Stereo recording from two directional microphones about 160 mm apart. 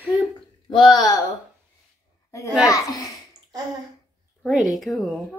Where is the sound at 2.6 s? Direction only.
20° left (ahead or behind).